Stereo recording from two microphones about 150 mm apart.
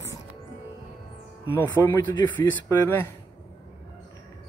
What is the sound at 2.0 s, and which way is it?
Speech, 30° left (ahead or behind).